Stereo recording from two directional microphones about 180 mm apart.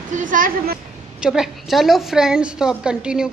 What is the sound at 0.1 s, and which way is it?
Speech, 45° right (ahead or behind).